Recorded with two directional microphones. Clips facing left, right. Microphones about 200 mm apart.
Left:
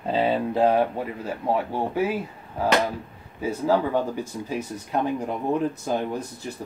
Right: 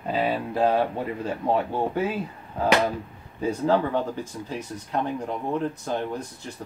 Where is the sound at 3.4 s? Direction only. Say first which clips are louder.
Even; 10° left (ahead or behind).